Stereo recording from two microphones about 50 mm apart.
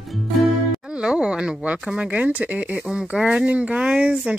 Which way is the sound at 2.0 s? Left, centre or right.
Right.